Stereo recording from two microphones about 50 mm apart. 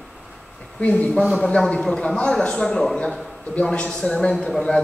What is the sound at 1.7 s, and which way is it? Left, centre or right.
A man's voice, centre.